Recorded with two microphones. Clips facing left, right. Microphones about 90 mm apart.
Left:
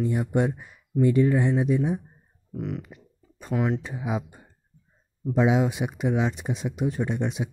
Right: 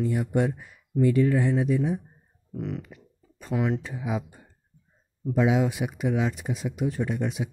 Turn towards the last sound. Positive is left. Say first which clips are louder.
# left 1 dB
turn(degrees=25)  # may be behind; listen again after turning